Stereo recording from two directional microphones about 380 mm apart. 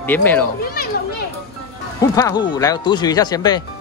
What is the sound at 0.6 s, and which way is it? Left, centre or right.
Children playing, left.